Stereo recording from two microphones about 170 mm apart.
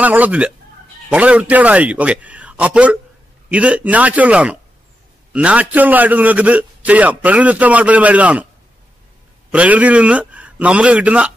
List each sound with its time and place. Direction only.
0.0 s a man's voice: 10° right (ahead or behind)
9.5 s a man's voice: 10° right (ahead or behind)